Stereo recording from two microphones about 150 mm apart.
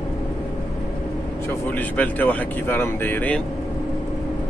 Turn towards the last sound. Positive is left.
turn(degrees=10)  # may be behind; listen again after turning